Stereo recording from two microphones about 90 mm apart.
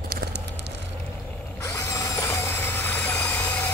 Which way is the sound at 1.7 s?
35° left (ahead or behind).